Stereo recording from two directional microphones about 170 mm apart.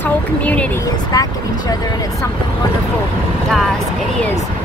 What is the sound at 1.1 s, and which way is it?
Speech, 20° left (ahead or behind).